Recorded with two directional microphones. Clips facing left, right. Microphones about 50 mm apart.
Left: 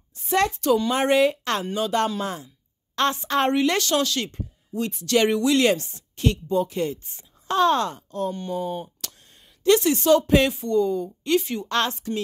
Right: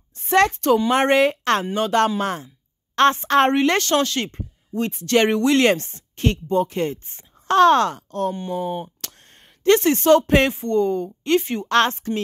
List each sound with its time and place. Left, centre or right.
0.2 s a woman's voice: right
7.4 s speech: right
8.4 s speech: right
9.7 s speech: right
10.5 s a woman's voice: right